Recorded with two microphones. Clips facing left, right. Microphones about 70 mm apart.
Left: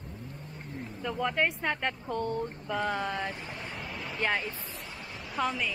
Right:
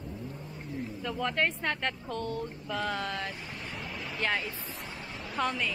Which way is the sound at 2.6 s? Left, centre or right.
Centre.